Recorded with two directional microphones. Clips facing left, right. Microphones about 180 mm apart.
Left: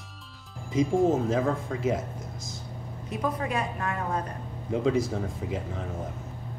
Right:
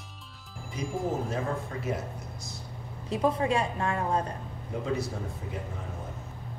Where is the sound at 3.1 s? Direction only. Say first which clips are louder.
Right 3 dB; 30° right (ahead or behind).